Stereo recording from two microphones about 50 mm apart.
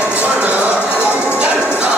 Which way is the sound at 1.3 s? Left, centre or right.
Right.